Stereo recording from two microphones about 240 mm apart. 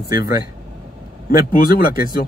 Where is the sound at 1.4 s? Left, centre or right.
Left.